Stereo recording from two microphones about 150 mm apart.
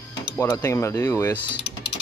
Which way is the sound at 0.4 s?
15° left (ahead or behind).